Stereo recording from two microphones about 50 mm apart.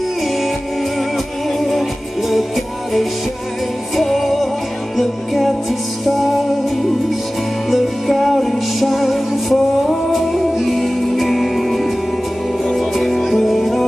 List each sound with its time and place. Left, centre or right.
1.1 s music: centre